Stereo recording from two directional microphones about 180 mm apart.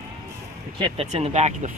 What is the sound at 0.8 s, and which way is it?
Speech, 35° right (ahead or behind).